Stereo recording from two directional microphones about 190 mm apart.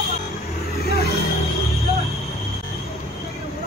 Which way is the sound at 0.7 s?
55° left (ahead or behind).